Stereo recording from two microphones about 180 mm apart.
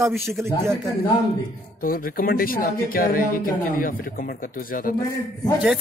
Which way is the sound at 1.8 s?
55° left (ahead or behind).